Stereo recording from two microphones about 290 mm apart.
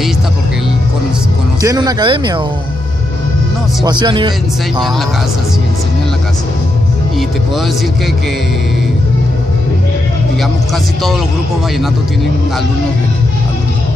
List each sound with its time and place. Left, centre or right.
1.6 s speech: centre
3.8 s speech: centre
10.4 s speech: centre